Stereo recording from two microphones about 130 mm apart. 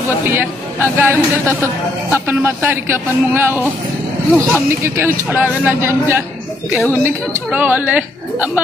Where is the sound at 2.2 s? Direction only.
15° right (ahead or behind).